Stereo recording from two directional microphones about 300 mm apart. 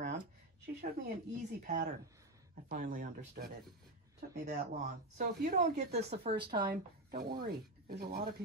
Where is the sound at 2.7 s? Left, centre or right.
Right.